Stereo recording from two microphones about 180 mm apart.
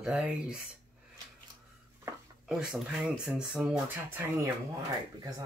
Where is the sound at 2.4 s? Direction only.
5° right (ahead or behind).